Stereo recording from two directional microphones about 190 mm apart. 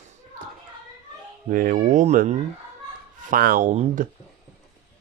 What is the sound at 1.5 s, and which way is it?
Speech, 45° right (ahead or behind).